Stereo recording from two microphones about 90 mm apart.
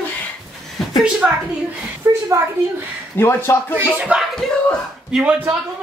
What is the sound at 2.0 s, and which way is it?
Speech, 30° right (ahead or behind).